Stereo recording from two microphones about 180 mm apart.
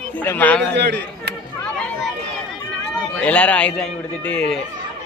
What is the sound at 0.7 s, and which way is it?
Speech, 65° right (ahead or behind).